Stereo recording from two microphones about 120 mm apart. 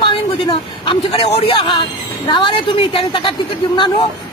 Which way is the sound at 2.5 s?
45° left (ahead or behind).